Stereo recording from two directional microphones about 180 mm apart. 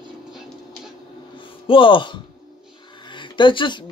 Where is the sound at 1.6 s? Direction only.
30° left (ahead or behind).